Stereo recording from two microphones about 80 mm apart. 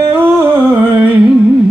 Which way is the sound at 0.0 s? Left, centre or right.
Right.